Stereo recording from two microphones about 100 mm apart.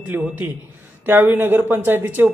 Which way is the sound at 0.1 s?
20° right (ahead or behind).